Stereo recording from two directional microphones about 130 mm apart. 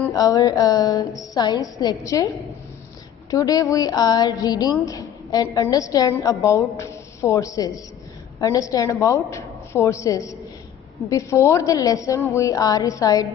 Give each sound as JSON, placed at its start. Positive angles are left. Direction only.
{"t": 0.1, "sound": "a woman's voice", "side_deg": 25}